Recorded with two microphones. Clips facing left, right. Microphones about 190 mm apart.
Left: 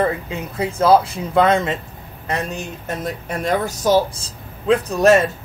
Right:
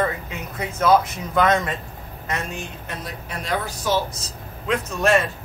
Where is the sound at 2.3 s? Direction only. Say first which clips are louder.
Left 5 dB; 35° left (ahead or behind).